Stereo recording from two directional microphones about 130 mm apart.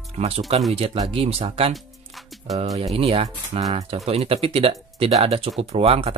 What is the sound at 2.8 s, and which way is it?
Speech, 45° right (ahead or behind).